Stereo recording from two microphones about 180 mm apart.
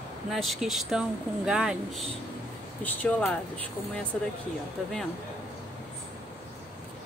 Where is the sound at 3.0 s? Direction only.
10° left (ahead or behind).